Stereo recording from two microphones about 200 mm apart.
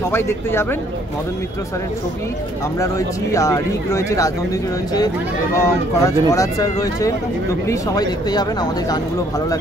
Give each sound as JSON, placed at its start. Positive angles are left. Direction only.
{"t": 0.1, "sound": "speech", "side_deg": 10}
{"t": 2.8, "sound": "speech", "side_deg": 15}